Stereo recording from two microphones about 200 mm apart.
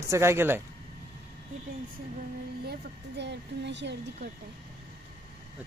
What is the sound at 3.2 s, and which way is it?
Speech, 60° right (ahead or behind).